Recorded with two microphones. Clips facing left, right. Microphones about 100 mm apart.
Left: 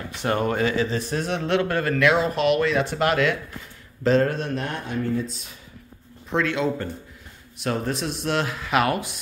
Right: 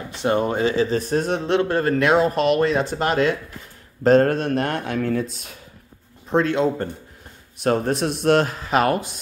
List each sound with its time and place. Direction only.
0.1 s speech: 25° right (ahead or behind); by 1.4 s 40° right (ahead or behind)
1.4 s speech: 30° right (ahead or behind)
4.0 s speech: 50° right (ahead or behind)
6.3 s speech: 40° right (ahead or behind)